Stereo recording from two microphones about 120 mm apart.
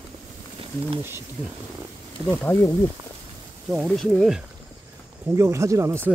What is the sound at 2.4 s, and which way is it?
Speech, 20° left (ahead or behind).